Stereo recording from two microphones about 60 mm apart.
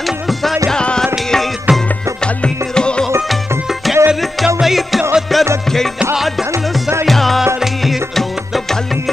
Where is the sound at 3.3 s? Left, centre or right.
Centre.